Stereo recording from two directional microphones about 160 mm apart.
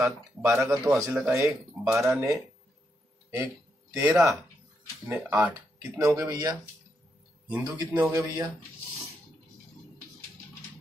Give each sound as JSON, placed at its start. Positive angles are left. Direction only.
{"t": 0.0, "sound": "speech", "side_deg": -20}
{"t": 3.9, "sound": "speech", "side_deg": -15}
{"t": 7.9, "sound": "speech", "side_deg": -15}